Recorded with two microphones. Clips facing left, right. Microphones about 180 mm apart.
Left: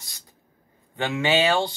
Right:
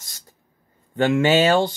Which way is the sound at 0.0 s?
45° right (ahead or behind).